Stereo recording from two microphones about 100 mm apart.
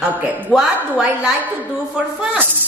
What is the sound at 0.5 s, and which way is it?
A woman's voice, 10° right (ahead or behind).